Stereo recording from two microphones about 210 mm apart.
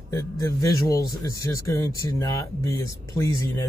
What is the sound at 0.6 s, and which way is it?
Speech, 15° left (ahead or behind).